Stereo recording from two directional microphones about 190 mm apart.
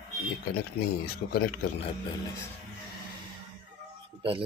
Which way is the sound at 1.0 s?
55° left (ahead or behind).